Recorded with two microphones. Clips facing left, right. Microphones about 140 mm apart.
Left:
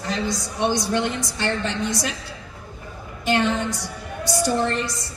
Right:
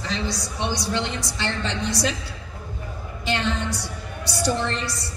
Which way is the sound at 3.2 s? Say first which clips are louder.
Left 4 dB; 50° left (ahead or behind).